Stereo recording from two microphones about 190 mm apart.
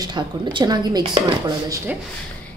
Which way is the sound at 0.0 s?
25° right (ahead or behind).